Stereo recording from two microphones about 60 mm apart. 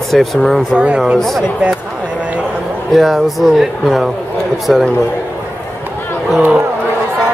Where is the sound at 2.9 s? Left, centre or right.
Centre.